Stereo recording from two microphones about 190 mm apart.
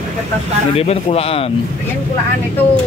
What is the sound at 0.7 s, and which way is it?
Speech, 35° left (ahead or behind).